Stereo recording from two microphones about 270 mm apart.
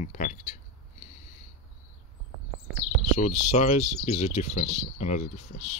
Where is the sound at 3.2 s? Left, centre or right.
Left.